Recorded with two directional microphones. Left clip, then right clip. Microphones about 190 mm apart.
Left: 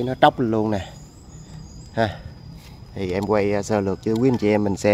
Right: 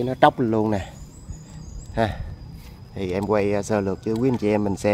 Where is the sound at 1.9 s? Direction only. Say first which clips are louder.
Left 1 dB; centre (ahead or behind).